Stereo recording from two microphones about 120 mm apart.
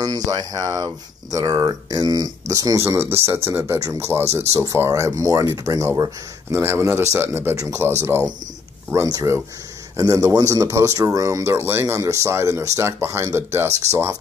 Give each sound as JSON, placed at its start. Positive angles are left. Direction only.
{"t": 0.0, "sound": "speech", "side_deg": -30}